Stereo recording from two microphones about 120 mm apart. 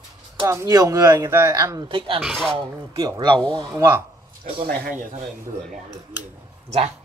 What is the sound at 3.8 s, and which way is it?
Speech, 20° right (ahead or behind).